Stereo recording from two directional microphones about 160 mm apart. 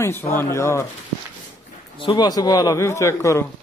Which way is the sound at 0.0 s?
15° left (ahead or behind).